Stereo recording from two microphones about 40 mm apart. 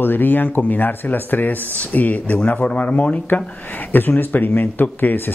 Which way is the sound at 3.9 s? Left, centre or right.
Left.